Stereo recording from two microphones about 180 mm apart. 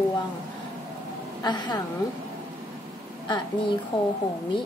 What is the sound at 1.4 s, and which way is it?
Speech, 25° left (ahead or behind).